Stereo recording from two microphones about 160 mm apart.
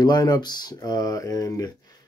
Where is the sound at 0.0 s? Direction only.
25° left (ahead or behind).